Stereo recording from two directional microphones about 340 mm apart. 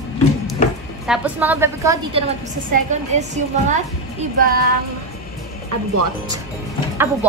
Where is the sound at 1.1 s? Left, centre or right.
Centre.